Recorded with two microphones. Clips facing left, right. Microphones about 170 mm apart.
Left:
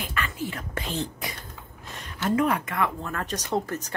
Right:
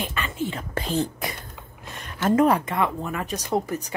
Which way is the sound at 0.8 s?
45° right (ahead or behind).